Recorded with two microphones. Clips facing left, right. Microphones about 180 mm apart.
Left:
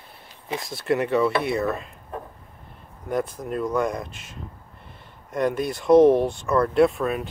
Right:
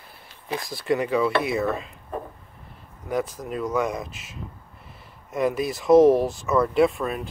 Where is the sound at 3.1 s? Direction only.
Centre (ahead or behind).